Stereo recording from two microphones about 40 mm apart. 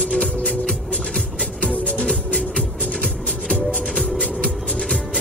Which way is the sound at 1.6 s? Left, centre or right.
Left.